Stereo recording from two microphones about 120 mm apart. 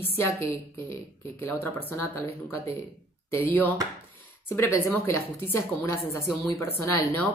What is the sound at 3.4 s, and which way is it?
Speech, 15° left (ahead or behind).